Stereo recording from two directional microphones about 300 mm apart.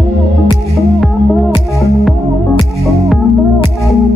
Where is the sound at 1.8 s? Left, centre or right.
Centre.